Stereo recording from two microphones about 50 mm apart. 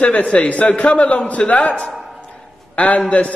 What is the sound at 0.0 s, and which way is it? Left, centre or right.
A man's voice, left.